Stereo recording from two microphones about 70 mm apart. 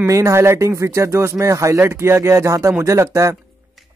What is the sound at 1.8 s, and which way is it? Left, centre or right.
Speech, right.